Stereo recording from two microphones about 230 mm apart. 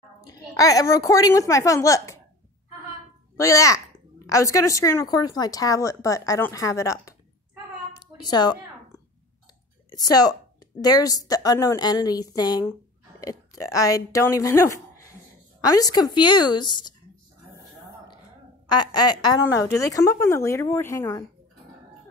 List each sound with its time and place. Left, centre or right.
0.2 s a woman's voice: centre
3.3 s speech: centre
7.9 s a sound: centre
9.8 s a woman's voice: centre
18.7 s speech: centre